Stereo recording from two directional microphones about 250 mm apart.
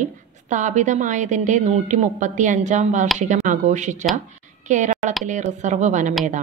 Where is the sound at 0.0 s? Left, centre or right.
Right.